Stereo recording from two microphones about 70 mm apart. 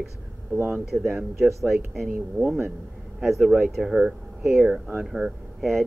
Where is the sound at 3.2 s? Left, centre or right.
Centre.